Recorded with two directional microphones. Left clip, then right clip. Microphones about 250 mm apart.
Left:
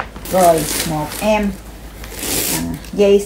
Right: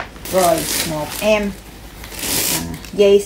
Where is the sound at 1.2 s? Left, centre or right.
Centre.